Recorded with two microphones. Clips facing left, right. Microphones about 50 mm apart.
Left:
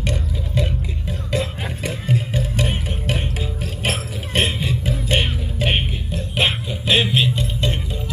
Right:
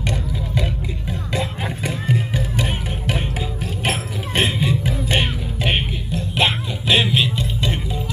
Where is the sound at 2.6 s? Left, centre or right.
Centre.